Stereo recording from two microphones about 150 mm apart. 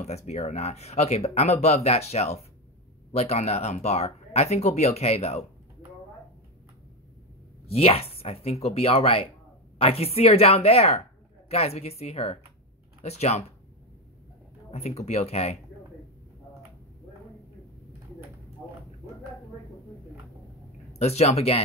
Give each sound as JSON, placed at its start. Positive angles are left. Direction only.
{"t": 0.0, "sound": "speech", "side_deg": 45}
{"t": 7.7, "sound": "speech", "side_deg": 40}
{"t": 14.7, "sound": "speech", "side_deg": 45}
{"t": 20.9, "sound": "speech", "side_deg": 45}